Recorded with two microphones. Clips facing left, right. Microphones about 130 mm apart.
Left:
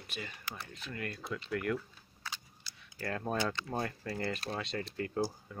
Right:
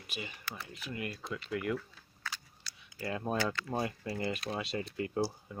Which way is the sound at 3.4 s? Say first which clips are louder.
Right 1 dB; 20° left (ahead or behind).